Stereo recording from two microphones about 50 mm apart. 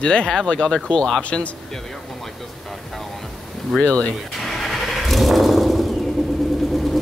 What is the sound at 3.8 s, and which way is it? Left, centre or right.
Speech, centre.